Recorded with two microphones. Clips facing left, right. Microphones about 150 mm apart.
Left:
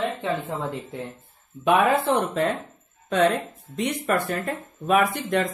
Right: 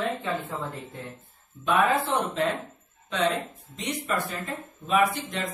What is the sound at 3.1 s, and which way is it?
A woman's voice, 50° left (ahead or behind).